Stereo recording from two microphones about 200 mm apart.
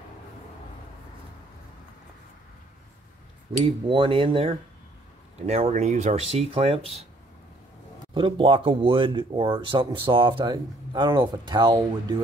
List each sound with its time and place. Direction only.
3.6 s speech: 25° right (ahead or behind)
8.1 s speech: 25° right (ahead or behind)